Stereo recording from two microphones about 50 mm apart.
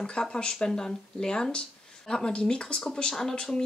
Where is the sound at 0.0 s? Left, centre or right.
Centre.